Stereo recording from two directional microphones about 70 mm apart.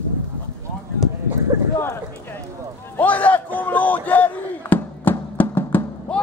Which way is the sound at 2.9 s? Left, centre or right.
Left.